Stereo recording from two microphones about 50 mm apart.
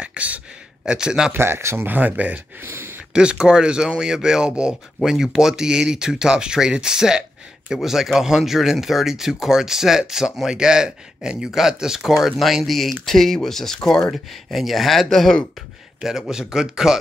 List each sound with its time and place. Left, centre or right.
0.0 s a sound: right
0.8 s speech: centre
1.3 s speech: right
1.9 s speech: right
2.6 s speech: right
3.1 s speech: centre
14.1 s speech: centre
16.0 s speech: centre